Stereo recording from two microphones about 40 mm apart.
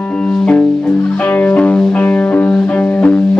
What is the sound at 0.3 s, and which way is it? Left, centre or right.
Music, left.